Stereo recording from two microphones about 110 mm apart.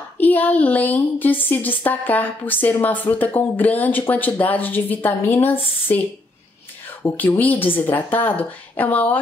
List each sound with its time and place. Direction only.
0.2 s a woman's voice: 15° left (ahead or behind)